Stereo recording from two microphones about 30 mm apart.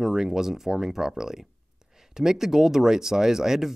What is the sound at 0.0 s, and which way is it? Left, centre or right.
Speech, centre.